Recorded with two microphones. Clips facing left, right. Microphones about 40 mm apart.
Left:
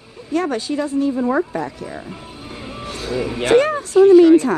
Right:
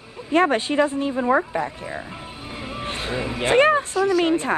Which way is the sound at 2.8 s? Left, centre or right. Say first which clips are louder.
Left 1 dB; right.